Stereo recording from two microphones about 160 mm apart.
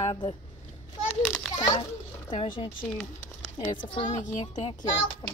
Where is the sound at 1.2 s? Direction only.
5° left (ahead or behind).